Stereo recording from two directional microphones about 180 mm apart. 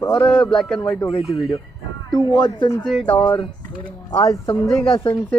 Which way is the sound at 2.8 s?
5° left (ahead or behind).